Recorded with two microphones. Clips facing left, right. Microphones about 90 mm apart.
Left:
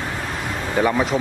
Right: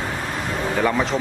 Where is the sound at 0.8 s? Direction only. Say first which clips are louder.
Left 2 dB; 5° left (ahead or behind).